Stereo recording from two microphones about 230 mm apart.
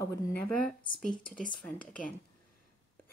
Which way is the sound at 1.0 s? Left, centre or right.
Centre.